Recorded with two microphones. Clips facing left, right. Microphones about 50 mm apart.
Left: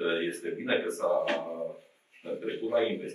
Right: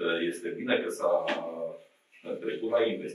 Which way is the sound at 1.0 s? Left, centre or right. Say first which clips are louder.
Right 1 dB; right.